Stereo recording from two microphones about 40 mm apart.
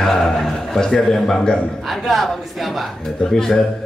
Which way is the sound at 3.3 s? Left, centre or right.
Centre.